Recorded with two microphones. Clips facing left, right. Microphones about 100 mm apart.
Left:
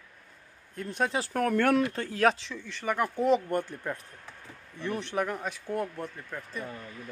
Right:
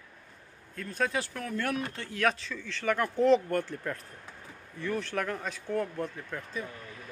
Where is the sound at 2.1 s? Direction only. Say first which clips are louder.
Left 3 dB; 30° left (ahead or behind); by 6.7 s centre (ahead or behind).